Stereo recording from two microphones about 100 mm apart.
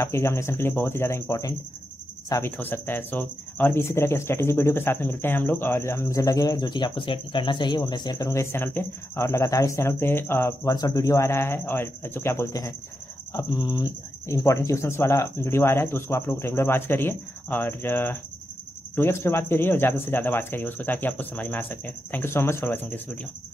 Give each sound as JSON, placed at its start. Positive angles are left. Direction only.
{"t": 0.0, "sound": "speech", "side_deg": 25}
{"t": 10.7, "sound": "speech", "side_deg": 35}